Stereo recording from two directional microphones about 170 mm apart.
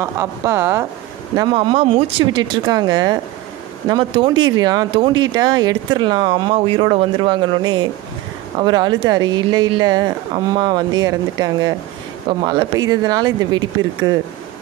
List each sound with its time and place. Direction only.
0.0 s speech: 15° right (ahead or behind)
1.3 s speech: 25° right (ahead or behind)